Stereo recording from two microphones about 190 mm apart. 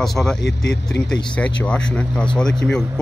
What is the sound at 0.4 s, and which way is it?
Speech, 65° left (ahead or behind).